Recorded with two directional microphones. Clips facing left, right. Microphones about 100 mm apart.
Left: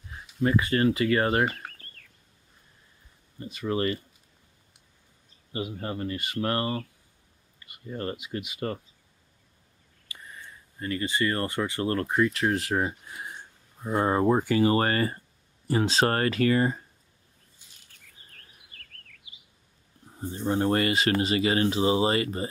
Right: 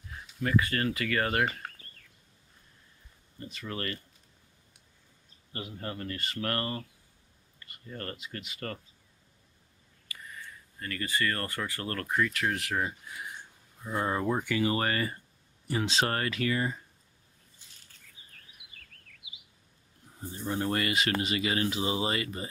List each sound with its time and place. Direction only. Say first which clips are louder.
0.4 s speech: left 5 dB; 25° left (ahead or behind)
3.3 s speech: left 9 dB; 20° left (ahead or behind)
5.5 s speech: left 6 dB; 15° left (ahead or behind)
10.0 s speech: even; 25° left (ahead or behind)
20.2 s speech: left 6 dB; 30° left (ahead or behind)